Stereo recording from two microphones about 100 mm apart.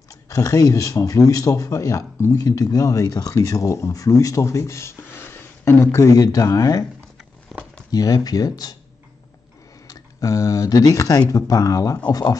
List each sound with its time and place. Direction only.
0.3 s a man's voice: 35° left (ahead or behind)
7.5 s a sound: centre (ahead or behind)
7.9 s a man's voice: 40° left (ahead or behind)
9.8 s a man's voice: 30° left (ahead or behind)